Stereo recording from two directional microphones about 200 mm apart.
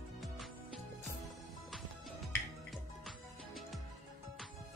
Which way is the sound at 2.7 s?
Centre (ahead or behind).